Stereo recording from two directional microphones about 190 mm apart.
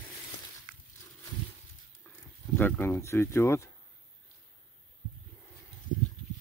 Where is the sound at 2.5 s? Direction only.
10° left (ahead or behind).